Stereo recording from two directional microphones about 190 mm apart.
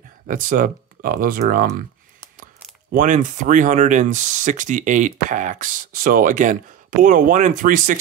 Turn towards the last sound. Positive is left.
turn(degrees=-45)  # may be behind; listen again after turning